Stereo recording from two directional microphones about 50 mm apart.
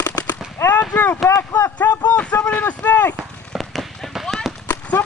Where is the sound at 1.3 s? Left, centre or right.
Left.